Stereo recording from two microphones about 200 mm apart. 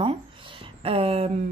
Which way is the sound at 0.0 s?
25° right (ahead or behind).